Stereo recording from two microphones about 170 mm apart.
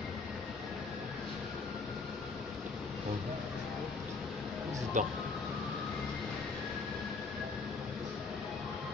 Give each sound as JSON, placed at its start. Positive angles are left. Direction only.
{"t": 5.0, "sound": "speech", "side_deg": -45}